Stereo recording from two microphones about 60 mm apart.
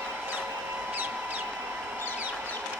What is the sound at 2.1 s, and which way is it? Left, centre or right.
Chicken, right.